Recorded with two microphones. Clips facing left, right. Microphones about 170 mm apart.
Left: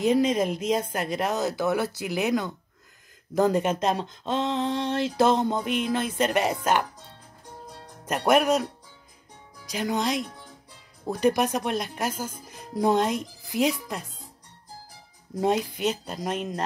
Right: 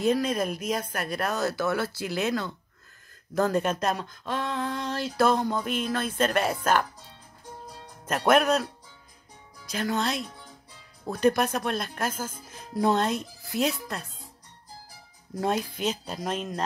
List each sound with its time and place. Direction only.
0.0 s speech: 20° left (ahead or behind)
8.3 s speech: 10° left (ahead or behind)
9.7 s speech: 15° left (ahead or behind)
15.4 s speech: 15° left (ahead or behind)
15.8 s music: centre (ahead or behind)